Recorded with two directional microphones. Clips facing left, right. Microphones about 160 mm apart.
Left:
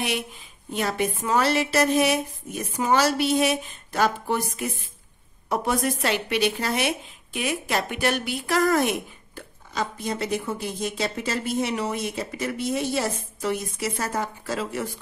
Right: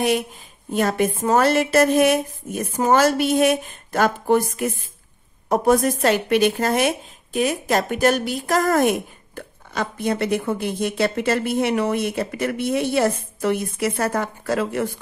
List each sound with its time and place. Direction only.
0.7 s a woman's voice: 50° right (ahead or behind)